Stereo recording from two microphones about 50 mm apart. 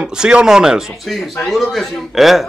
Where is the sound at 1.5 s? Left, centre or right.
Centre.